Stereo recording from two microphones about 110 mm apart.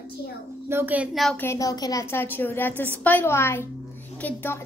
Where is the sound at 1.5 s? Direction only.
35° left (ahead or behind).